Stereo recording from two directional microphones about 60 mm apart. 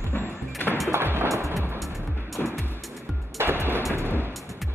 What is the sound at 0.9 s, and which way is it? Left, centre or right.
Music, right.